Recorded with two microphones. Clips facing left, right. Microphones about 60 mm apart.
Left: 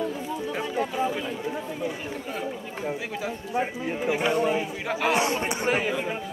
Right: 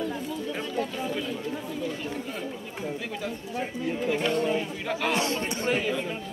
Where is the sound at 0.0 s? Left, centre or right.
Centre.